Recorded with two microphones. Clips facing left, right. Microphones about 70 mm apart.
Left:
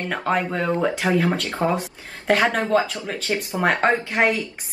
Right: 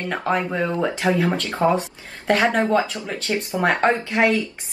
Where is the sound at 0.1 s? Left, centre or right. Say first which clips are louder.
Even; centre.